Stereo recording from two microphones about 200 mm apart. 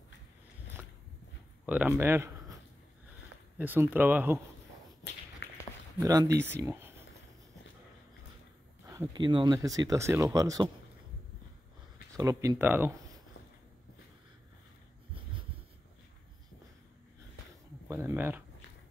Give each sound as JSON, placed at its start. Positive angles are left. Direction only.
{"t": 1.7, "sound": "speech", "side_deg": -10}
{"t": 3.5, "sound": "speech", "side_deg": -10}
{"t": 5.9, "sound": "speech", "side_deg": -15}
{"t": 8.8, "sound": "speech", "side_deg": -15}
{"t": 12.2, "sound": "speech", "side_deg": -15}
{"t": 17.8, "sound": "a sound", "side_deg": -10}